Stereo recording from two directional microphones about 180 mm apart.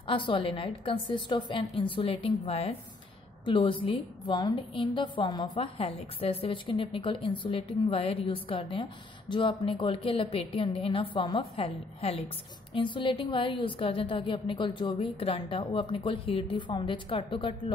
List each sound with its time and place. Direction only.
0.0 s a woman's voice: 25° left (ahead or behind)